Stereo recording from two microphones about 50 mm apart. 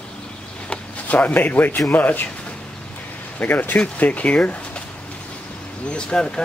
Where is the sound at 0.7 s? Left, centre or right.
Left.